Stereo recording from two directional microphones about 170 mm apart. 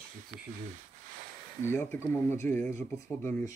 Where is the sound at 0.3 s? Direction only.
40° right (ahead or behind).